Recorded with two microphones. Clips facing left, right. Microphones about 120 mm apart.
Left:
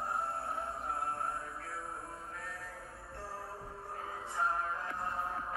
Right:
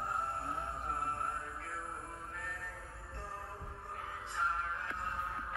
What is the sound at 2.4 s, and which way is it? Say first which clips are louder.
Music: even; 30° left (ahead or behind).